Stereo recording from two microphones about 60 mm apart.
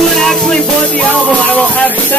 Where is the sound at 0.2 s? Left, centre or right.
Centre.